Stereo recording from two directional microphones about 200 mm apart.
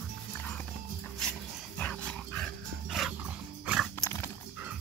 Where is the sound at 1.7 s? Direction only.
5° left (ahead or behind).